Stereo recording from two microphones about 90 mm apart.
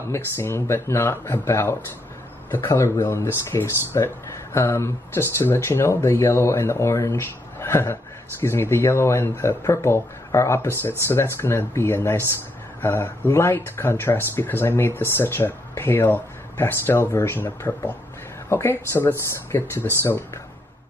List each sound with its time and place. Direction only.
0.1 s speech: 30° left (ahead or behind)